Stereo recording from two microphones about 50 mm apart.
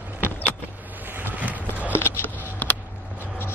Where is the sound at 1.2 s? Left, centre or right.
Right.